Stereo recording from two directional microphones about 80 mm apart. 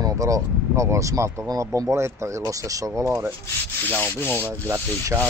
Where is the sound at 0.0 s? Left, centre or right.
Right.